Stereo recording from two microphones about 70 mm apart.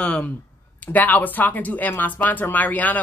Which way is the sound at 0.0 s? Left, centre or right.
Centre.